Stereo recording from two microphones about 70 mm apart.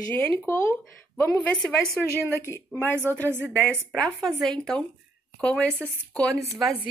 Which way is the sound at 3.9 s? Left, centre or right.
Centre.